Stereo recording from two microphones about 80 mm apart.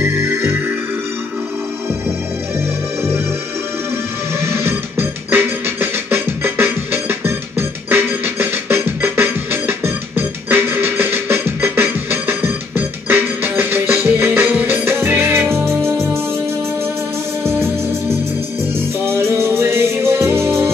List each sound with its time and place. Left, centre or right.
0.0 s music: right
4.6 s music: right
17.4 s music: right